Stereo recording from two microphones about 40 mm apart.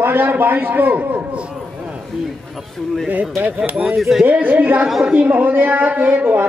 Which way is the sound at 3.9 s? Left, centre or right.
Centre.